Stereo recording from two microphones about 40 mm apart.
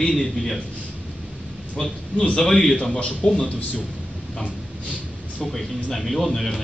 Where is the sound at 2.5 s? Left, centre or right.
Centre.